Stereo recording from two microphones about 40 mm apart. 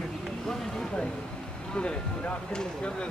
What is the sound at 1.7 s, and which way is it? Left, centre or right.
Vehicle, left.